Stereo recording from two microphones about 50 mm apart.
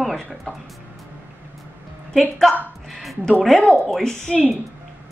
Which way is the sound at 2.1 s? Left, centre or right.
Centre.